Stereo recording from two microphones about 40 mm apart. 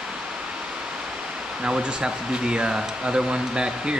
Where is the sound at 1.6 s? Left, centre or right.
Right.